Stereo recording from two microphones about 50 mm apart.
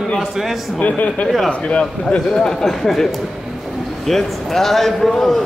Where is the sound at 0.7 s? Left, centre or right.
Left.